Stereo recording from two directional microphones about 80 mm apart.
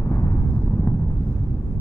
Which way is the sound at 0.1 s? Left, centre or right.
Left.